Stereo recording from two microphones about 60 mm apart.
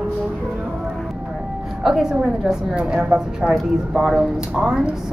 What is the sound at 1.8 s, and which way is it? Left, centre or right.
Speech, centre.